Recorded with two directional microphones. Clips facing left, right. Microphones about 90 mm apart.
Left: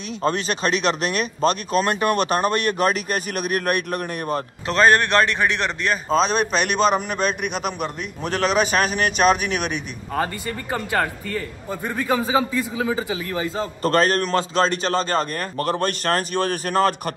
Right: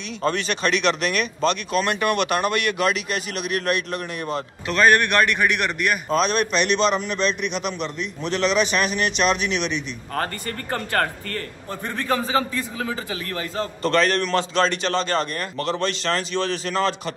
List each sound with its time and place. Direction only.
0.2 s speech: 35° left (ahead or behind)
4.4 s a man's voice: 30° left (ahead or behind)
10.1 s a man's voice: 10° left (ahead or behind)
13.8 s speech: 40° left (ahead or behind)